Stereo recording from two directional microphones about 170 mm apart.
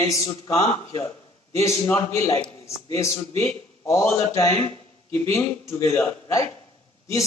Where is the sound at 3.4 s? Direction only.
15° left (ahead or behind).